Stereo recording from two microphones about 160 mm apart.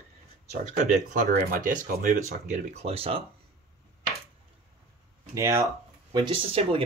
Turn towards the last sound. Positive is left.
turn(degrees=-35)  # may be behind; listen again after turning